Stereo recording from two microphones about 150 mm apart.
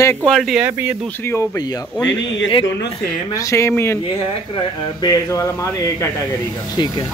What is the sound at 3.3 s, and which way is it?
Speech, 20° left (ahead or behind).